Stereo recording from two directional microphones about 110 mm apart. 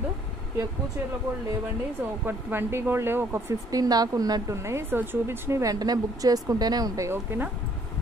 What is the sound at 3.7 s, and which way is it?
A woman's voice, 35° right (ahead or behind).